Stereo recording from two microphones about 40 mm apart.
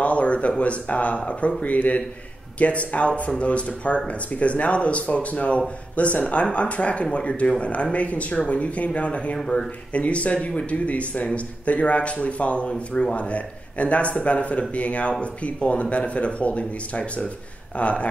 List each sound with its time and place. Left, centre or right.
0.0 s speech: left